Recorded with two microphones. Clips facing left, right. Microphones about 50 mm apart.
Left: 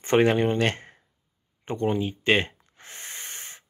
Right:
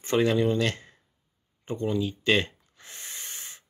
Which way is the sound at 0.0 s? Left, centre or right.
Left.